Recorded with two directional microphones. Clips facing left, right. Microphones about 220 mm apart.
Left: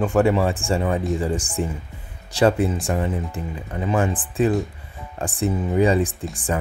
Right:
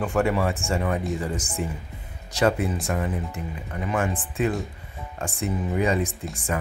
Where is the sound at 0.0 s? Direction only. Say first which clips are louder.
Left 5 dB; 30° left (ahead or behind).